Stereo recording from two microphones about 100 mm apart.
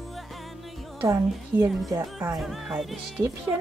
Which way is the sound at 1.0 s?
25° right (ahead or behind).